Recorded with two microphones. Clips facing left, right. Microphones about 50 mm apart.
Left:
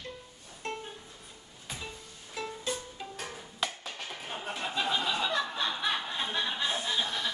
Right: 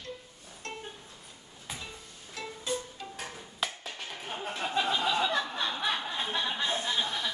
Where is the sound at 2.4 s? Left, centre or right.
Centre.